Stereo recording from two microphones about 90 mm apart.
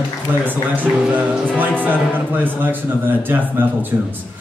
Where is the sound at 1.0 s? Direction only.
10° right (ahead or behind).